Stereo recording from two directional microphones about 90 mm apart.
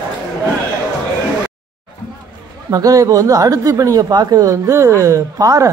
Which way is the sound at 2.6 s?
40° right (ahead or behind).